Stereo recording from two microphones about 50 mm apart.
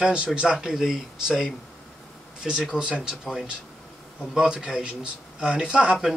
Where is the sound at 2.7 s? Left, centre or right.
Centre.